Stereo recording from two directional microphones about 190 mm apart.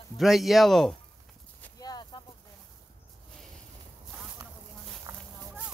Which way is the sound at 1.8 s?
20° left (ahead or behind).